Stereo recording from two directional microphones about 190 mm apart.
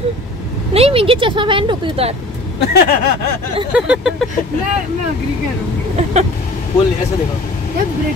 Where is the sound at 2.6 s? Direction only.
60° left (ahead or behind).